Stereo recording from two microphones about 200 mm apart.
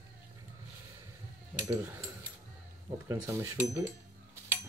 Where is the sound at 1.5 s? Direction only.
10° right (ahead or behind).